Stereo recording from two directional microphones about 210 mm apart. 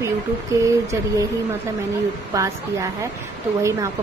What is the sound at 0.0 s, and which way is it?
Speech, 15° right (ahead or behind).